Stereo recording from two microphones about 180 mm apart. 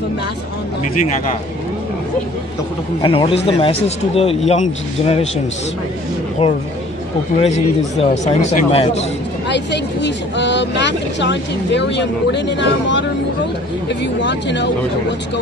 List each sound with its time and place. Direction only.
3.0 s speech: 30° left (ahead or behind)
6.4 s speech: 30° left (ahead or behind)
9.5 s speech: 75° left (ahead or behind)
14.2 s speech: 80° left